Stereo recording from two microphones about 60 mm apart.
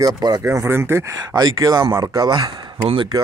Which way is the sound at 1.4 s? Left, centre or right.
Right.